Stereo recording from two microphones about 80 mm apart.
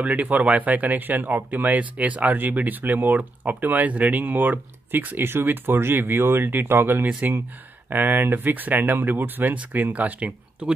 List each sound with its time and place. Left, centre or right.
0.0 s speech: centre